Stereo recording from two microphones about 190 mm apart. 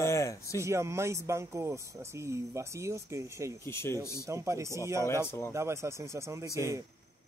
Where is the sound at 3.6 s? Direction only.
15° left (ahead or behind).